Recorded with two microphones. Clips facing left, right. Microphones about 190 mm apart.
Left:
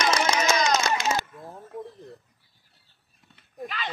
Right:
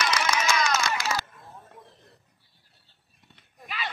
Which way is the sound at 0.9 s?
20° left (ahead or behind).